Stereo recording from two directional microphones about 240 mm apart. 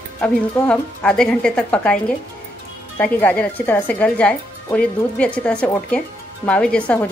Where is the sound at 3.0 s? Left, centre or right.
Centre.